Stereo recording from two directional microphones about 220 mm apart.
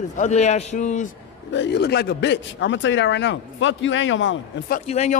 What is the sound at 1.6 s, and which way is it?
A man's voice, 50° left (ahead or behind).